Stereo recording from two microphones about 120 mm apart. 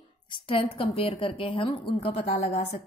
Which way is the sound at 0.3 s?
45° left (ahead or behind).